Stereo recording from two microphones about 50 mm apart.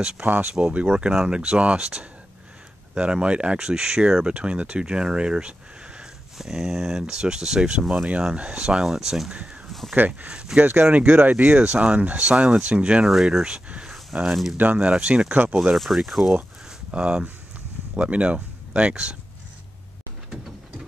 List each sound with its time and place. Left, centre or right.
0.2 s speech: right
1.2 s speech: centre
6.3 s speech: centre
9.7 s a sound: centre
9.9 s speech: right
10.3 s speech: centre
10.6 s speech: right
10.9 s speech: right
11.5 s speech: right
13.0 s speech: centre
13.7 s a sound: right
14.6 s speech: right
15.7 s speech: centre
16.9 s speech: right